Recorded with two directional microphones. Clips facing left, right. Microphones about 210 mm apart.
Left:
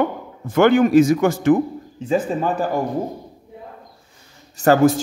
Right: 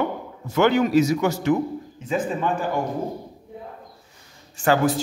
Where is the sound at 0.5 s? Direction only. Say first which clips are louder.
Left 5 dB; 50° left (ahead or behind).